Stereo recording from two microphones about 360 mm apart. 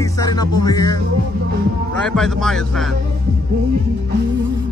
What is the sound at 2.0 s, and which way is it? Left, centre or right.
Speech, centre.